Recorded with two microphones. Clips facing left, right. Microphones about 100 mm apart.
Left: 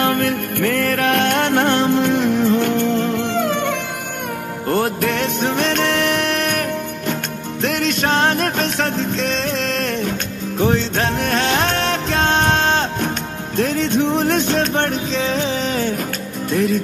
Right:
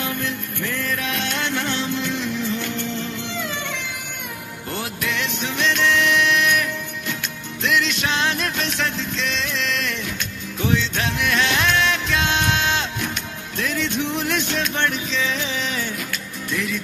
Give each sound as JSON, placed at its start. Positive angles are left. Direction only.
{"t": 0.0, "sound": "music", "side_deg": 60}